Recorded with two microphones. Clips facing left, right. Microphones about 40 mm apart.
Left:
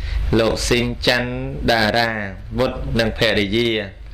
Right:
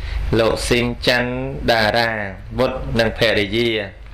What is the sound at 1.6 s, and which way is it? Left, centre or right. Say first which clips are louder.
A man's voice: right 1 dB; centre.